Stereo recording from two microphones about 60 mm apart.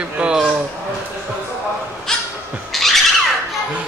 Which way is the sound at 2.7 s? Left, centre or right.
Centre.